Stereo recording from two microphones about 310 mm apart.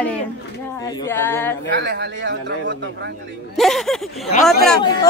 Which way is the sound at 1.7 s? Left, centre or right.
Right.